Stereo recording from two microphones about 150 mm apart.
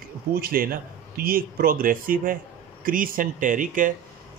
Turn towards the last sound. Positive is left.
turn(degrees=-60)  # may be behind; listen again after turning